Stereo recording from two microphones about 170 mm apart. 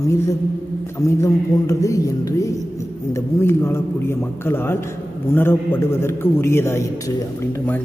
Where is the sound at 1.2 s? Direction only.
20° left (ahead or behind).